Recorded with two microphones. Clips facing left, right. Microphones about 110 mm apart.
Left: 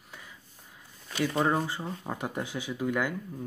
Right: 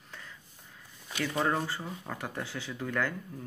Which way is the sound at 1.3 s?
15° left (ahead or behind).